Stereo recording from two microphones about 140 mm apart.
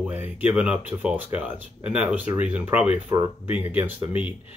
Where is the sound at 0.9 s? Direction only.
10° right (ahead or behind).